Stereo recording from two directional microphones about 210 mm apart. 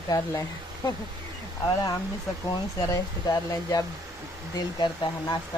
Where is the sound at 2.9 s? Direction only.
15° left (ahead or behind).